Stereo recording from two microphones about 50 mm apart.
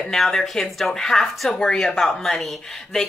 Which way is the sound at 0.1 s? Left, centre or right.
Centre.